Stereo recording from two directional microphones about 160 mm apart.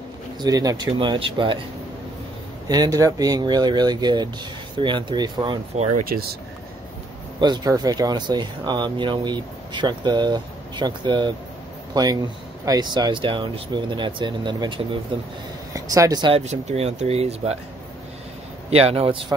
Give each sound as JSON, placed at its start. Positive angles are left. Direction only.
{"t": 0.4, "sound": "speech", "side_deg": -25}
{"t": 2.7, "sound": "speech", "side_deg": -25}
{"t": 6.0, "sound": "speech", "side_deg": -70}
{"t": 7.3, "sound": "speech", "side_deg": -25}
{"t": 15.7, "sound": "speech", "side_deg": -20}
{"t": 18.7, "sound": "speech", "side_deg": -40}